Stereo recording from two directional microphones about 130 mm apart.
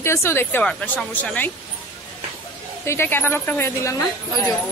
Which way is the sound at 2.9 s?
15° left (ahead or behind).